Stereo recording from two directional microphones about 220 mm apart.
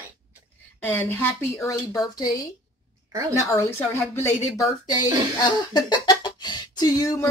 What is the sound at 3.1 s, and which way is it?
Speech, 15° right (ahead or behind).